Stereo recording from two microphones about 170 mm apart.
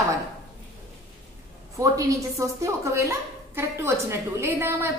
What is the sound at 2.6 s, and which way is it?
A woman's voice, 15° right (ahead or behind).